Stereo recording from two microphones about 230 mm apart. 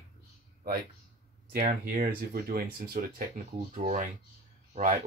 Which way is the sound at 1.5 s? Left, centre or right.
Right.